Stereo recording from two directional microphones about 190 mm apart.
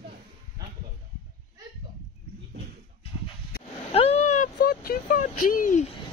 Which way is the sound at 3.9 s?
35° left (ahead or behind).